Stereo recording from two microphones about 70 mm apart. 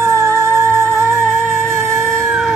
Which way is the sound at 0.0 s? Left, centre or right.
Right.